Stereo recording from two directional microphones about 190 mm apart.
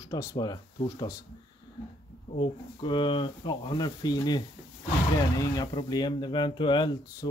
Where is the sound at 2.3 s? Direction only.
25° left (ahead or behind).